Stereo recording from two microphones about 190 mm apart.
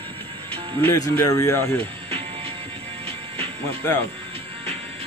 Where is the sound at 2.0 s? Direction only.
30° right (ahead or behind).